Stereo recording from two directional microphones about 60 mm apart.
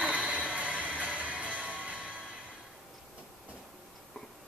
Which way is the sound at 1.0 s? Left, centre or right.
Right.